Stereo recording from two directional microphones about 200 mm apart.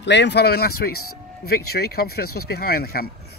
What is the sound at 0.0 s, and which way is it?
Speech, 60° left (ahead or behind).